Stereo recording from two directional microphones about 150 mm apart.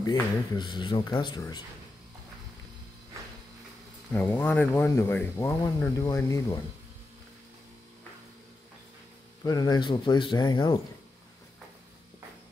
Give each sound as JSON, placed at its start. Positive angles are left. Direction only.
{"t": 0.0, "sound": "speech", "side_deg": 30}
{"t": 4.1, "sound": "speech", "side_deg": 15}
{"t": 9.4, "sound": "speech", "side_deg": 25}